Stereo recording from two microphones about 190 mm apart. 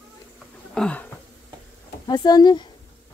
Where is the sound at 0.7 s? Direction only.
5° left (ahead or behind).